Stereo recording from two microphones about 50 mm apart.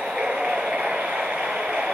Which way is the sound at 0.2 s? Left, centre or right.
Centre.